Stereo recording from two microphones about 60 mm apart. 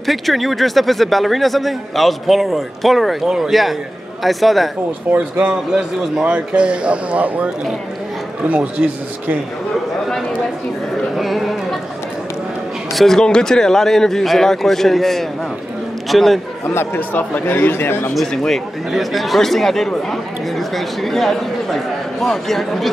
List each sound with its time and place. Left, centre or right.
0.0 s speech: centre
5.1 s speech: right
5.5 s a man's voice: centre
8.5 s speech: right
11.1 s a man's voice: centre
12.9 s a man's voice: centre
16.6 s speech: left
18.1 s a man's voice: centre